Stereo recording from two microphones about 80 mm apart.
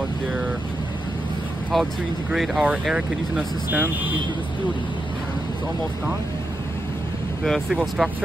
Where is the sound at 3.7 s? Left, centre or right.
Right.